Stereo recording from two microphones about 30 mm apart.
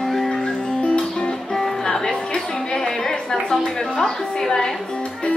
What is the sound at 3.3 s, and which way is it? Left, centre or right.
A woman's voice, centre.